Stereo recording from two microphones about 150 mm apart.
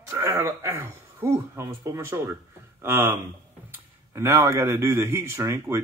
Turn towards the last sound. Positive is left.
turn(degrees=-15)  # may be behind; listen again after turning